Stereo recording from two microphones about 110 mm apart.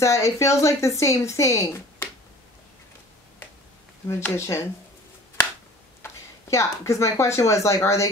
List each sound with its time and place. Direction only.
0.0 s a woman's voice: 25° left (ahead or behind)
4.1 s a woman's voice: 25° left (ahead or behind)
6.0 s speech: 30° left (ahead or behind)